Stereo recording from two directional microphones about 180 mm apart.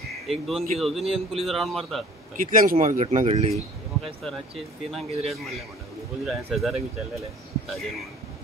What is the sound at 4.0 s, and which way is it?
A man's voice, centre (ahead or behind).